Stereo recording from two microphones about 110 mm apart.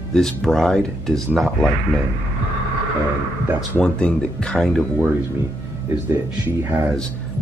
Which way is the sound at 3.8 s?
10° left (ahead or behind).